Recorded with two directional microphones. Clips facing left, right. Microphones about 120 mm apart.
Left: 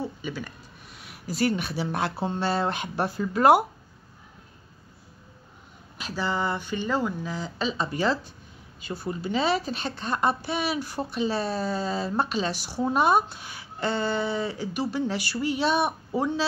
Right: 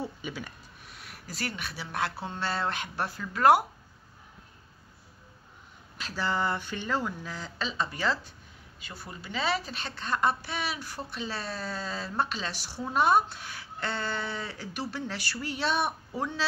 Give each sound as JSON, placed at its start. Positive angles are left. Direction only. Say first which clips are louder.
{"t": 0.0, "sound": "a sound", "louder": "left 4 dB", "side_deg": -5}
{"t": 0.9, "sound": "speech", "louder": "left 10 dB", "side_deg": 5}
{"t": 5.9, "sound": "speech", "louder": "left 2 dB", "side_deg": 5}